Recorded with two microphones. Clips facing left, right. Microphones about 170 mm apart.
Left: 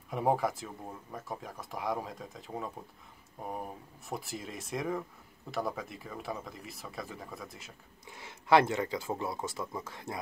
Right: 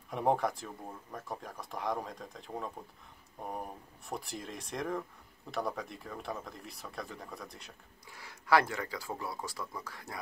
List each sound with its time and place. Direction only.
0.1 s speech: 5° left (ahead or behind)
8.1 s speech: 25° left (ahead or behind)